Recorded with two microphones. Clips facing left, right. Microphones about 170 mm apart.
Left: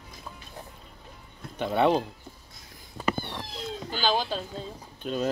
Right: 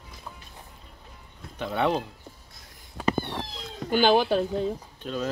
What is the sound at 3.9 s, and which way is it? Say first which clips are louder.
Speech: right 8 dB; 60° right (ahead or behind).